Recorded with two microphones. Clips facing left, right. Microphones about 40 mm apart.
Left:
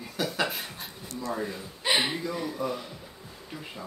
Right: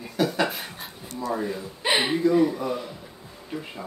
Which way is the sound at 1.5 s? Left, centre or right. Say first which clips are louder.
Right 3 dB; right.